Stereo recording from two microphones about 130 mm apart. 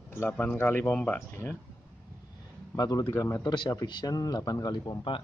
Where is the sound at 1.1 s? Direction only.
20° left (ahead or behind).